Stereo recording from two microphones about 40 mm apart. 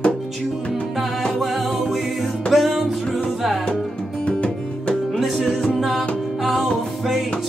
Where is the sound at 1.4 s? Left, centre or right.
Centre.